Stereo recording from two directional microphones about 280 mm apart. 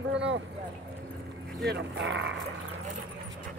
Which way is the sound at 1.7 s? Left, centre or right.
Right.